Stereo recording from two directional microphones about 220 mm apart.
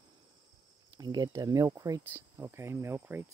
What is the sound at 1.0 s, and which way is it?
Speech, 20° right (ahead or behind).